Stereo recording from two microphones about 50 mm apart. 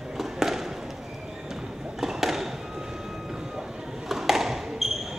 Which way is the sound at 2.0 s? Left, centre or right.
Centre.